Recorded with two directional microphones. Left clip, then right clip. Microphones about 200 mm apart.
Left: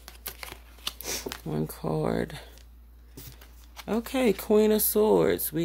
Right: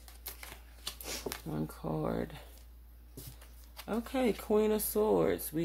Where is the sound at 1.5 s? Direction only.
50° left (ahead or behind).